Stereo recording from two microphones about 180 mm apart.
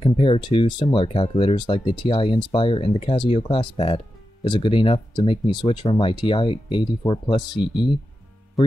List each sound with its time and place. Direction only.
0.0 s speech: 30° left (ahead or behind)